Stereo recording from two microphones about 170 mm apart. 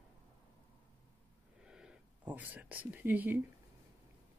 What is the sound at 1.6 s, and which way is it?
Whispering, 5° right (ahead or behind).